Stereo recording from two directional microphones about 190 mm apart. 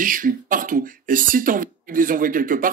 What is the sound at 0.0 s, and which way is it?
Speech, 45° right (ahead or behind).